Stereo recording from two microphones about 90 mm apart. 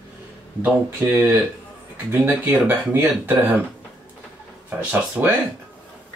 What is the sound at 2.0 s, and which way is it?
Speech, 25° right (ahead or behind).